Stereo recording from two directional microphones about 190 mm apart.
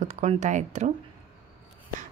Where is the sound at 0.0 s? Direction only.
40° right (ahead or behind).